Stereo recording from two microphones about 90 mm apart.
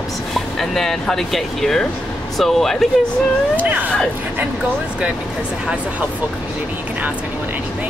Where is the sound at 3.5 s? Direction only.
20° right (ahead or behind).